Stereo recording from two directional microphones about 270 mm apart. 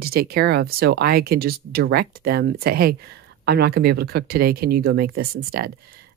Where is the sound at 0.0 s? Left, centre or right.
Right.